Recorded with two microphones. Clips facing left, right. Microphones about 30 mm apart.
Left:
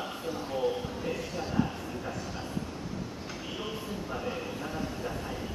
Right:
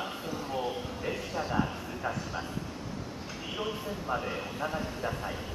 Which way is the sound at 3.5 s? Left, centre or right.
Centre.